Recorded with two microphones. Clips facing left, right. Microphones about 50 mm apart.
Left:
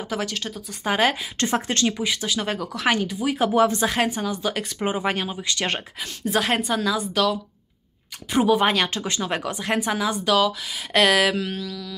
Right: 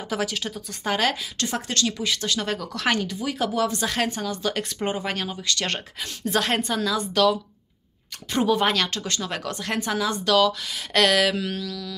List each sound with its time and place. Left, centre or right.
0.1 s speech: centre
0.8 s speech: centre
1.4 s speech: left; by 3.3 s centre
3.3 s speech: left
5.9 s speech: centre